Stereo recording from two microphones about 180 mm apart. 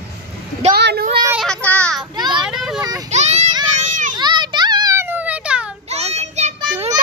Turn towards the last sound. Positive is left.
turn(degrees=-35)  # may be behind; listen again after turning